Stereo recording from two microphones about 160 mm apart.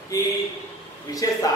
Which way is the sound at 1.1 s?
20° left (ahead or behind).